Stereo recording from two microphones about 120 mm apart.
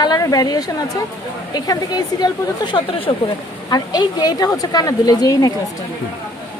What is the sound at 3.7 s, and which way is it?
A woman's voice, 35° left (ahead or behind).